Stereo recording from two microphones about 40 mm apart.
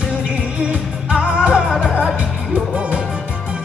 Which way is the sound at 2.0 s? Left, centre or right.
Right.